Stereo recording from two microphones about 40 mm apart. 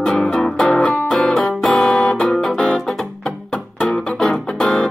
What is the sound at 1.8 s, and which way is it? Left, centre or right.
Music, left.